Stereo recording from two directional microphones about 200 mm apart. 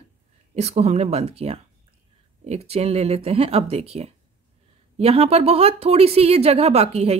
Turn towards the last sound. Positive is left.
turn(degrees=-30)  # may be behind; listen again after turning